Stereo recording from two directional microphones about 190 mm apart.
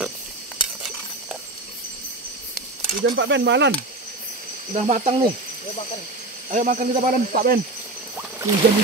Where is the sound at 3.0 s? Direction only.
70° right (ahead or behind).